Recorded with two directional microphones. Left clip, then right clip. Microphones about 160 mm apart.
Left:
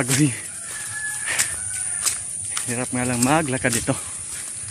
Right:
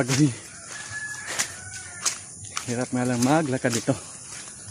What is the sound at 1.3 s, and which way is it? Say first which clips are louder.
Chicken: left 5 dB; centre (ahead or behind).